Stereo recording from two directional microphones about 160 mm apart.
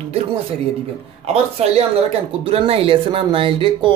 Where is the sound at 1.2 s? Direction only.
40° right (ahead or behind).